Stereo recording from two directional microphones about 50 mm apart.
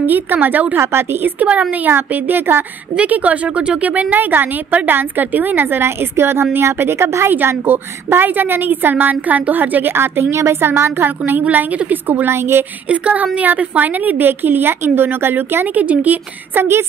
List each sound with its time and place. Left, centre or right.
0.0 s a woman's voice: right
0.7 s a woman's voice: right
1.5 s speech: right
1.9 s a woman's voice: right
3.0 s speech: right
3.9 s a woman's voice: right
7.6 s a woman's voice: right
9.9 s a woman's voice: right
10.3 s a woman's voice: right
11.4 s a woman's voice: right
12.3 s a woman's voice: right
12.8 s a woman's voice: right
16.5 s a woman's voice: right